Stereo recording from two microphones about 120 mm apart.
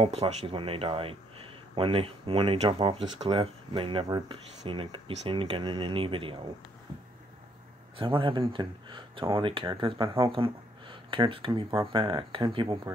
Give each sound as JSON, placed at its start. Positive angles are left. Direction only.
{"t": 0.0, "sound": "speech", "side_deg": -60}
{"t": 8.0, "sound": "speech", "side_deg": -45}